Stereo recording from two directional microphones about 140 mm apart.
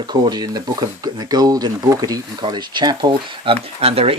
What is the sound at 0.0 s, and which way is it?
Speech, 30° right (ahead or behind).